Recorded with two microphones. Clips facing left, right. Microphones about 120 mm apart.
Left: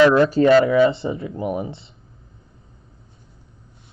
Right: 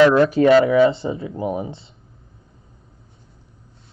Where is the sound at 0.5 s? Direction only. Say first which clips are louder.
Right 1 dB; 20° right (ahead or behind).